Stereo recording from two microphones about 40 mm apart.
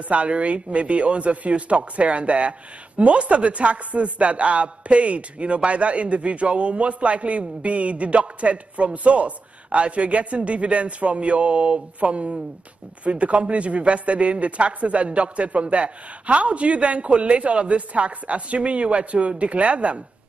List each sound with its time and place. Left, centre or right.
0.1 s speech: right